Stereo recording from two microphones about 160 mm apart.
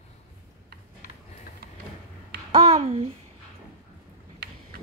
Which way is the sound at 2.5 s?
35° right (ahead or behind).